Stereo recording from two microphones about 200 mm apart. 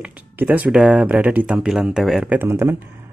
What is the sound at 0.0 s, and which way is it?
Speech, 10° right (ahead or behind).